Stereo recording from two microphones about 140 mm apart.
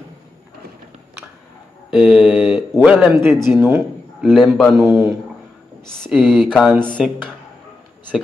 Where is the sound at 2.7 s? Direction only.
5° right (ahead or behind).